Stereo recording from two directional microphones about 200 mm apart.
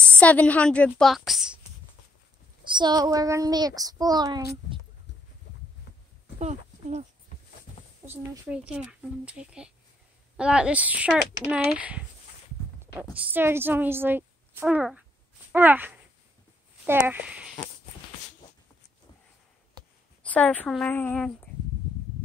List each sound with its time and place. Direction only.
0.2 s speech: 5° left (ahead or behind)
2.7 s speech: 20° right (ahead or behind)
6.4 s speech: 35° right (ahead or behind)
8.0 s speech: 10° right (ahead or behind)
13.1 s a woman's voice: 10° right (ahead or behind)
20.2 s speech: 5° left (ahead or behind)